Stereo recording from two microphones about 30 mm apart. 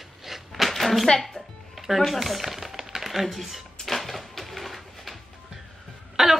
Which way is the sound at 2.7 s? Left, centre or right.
Centre.